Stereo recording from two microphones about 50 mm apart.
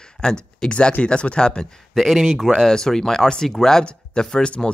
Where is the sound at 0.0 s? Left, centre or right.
Centre.